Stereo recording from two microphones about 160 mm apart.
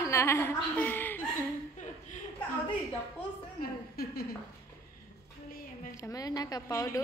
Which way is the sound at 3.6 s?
70° left (ahead or behind).